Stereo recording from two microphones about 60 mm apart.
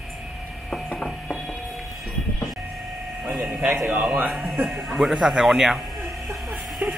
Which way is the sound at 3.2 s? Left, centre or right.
Right.